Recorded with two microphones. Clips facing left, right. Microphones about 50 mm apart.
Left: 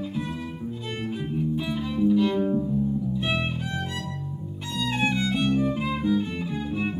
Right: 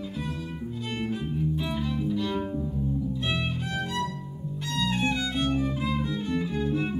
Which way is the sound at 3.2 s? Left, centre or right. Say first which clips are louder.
Left 3 dB; centre.